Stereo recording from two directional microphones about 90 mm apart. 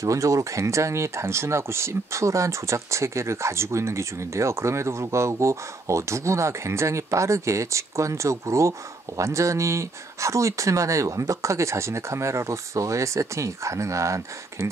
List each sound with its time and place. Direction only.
0.0 s speech: 35° right (ahead or behind)